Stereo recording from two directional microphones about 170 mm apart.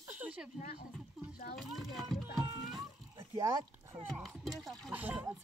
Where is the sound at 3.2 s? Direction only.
20° right (ahead or behind).